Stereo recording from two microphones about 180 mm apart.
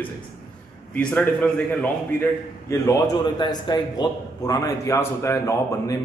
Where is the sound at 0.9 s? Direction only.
10° left (ahead or behind).